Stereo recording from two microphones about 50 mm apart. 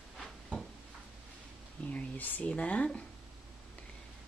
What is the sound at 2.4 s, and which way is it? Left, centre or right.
Speech, left.